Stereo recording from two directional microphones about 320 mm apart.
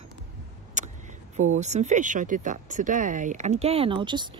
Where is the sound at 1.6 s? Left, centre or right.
Right.